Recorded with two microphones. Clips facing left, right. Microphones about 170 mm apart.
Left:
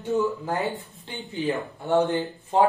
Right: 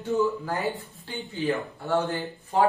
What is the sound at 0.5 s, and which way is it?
Speech, centre (ahead or behind).